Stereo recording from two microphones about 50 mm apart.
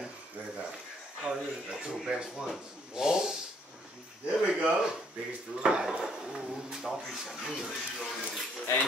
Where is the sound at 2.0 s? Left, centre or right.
Centre.